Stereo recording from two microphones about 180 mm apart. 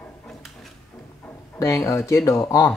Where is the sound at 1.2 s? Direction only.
15° left (ahead or behind).